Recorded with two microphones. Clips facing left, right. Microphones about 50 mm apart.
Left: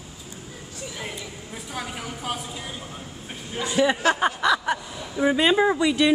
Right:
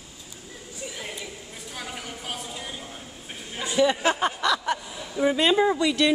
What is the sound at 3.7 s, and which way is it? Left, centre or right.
Speech, centre.